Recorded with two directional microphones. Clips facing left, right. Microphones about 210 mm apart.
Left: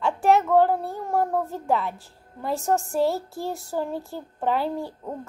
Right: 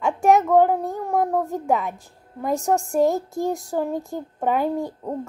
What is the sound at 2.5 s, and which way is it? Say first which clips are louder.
A woman's voice: right 3 dB; 40° right (ahead or behind).